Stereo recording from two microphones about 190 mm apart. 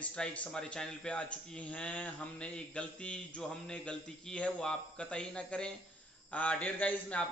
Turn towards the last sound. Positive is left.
turn(degrees=5)  # may be behind; listen again after turning